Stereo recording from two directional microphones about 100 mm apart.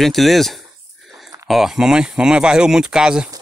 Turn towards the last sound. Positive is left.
turn(degrees=-5)  # may be behind; listen again after turning